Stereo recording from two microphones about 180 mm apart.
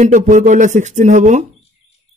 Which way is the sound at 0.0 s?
45° right (ahead or behind).